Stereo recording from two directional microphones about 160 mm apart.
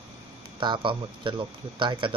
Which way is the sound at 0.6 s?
30° right (ahead or behind).